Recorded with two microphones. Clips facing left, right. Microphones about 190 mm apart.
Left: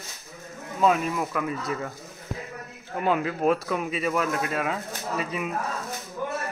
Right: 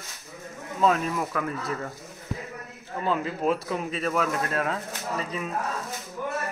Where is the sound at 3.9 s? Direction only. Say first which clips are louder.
Right 1 dB; 5° left (ahead or behind).